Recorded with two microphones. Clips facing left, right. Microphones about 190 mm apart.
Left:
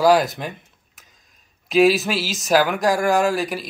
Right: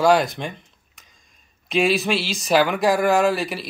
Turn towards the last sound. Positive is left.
turn(degrees=0)  # may be behind; listen again after turning